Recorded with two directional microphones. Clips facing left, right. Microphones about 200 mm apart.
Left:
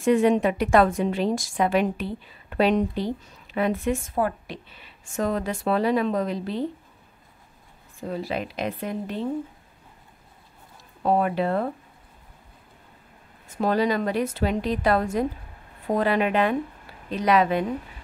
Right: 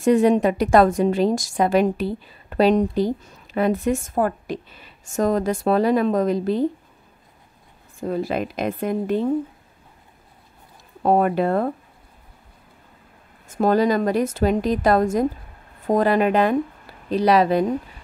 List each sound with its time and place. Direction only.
0.0 s a woman's voice: 40° right (ahead or behind)
8.0 s a woman's voice: 50° right (ahead or behind)
11.0 s a woman's voice: 50° right (ahead or behind)
13.5 s a woman's voice: 45° right (ahead or behind)